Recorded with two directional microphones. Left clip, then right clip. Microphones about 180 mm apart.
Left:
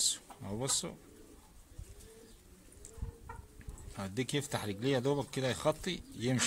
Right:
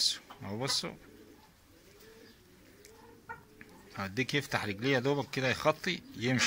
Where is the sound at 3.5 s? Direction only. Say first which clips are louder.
Right 5 dB; 15° left (ahead or behind).